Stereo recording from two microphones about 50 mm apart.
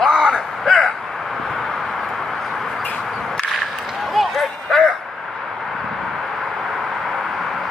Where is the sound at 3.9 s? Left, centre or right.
Centre.